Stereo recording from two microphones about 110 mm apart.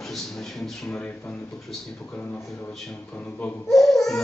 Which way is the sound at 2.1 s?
15° left (ahead or behind).